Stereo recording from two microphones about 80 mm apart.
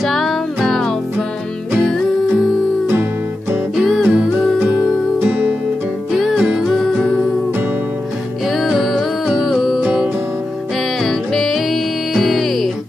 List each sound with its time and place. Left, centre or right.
0.0 s music: centre
3.7 s music: centre
5.2 s music: right
6.1 s music: centre
8.5 s music: centre
11.0 s music: centre